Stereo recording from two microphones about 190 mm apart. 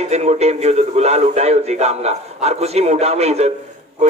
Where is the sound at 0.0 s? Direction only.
35° right (ahead or behind).